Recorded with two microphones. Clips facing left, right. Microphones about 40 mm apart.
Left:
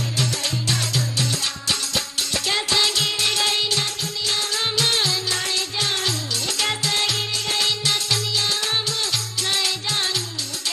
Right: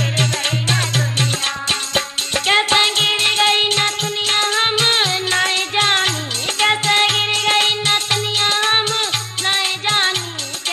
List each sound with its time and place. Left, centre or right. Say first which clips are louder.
0.2 s music: right 3 dB; right